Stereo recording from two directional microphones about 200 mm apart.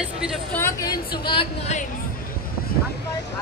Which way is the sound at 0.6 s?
15° left (ahead or behind).